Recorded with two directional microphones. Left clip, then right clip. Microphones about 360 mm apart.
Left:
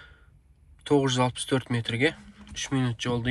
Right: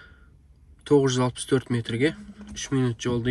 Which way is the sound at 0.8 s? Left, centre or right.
Left.